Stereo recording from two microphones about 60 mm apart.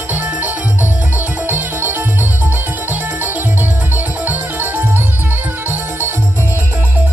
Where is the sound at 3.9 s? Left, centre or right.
Right.